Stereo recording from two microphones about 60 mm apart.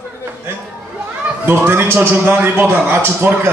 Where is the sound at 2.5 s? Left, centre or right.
Right.